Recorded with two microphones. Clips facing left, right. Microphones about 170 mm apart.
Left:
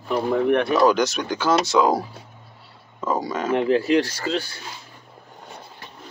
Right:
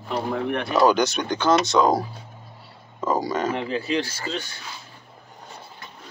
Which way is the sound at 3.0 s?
Centre (ahead or behind).